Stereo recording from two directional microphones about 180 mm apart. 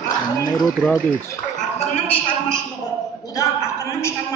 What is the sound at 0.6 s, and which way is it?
Speech, centre (ahead or behind).